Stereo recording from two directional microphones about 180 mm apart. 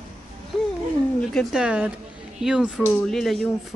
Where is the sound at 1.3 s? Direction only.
5° right (ahead or behind).